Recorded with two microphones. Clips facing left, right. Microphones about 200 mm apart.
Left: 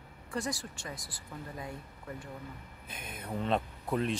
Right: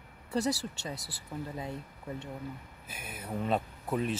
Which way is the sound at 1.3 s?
25° right (ahead or behind).